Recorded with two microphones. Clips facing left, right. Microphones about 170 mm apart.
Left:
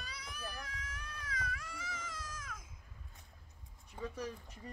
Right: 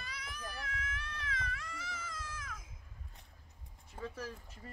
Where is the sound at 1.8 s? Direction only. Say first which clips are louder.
Even; 10° right (ahead or behind).